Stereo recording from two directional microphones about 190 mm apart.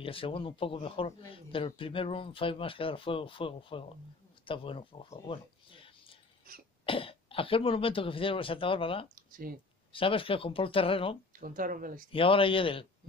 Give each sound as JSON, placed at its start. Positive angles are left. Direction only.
{"t": 0.0, "sound": "a man's voice", "side_deg": 30}
{"t": 5.1, "sound": "a sound", "side_deg": 25}
{"t": 6.9, "sound": "a man's voice", "side_deg": 30}
{"t": 9.1, "sound": "speech", "side_deg": -50}
{"t": 9.9, "sound": "a man's voice", "side_deg": 30}
{"t": 11.3, "sound": "speech", "side_deg": -45}
{"t": 12.1, "sound": "a man's voice", "side_deg": 30}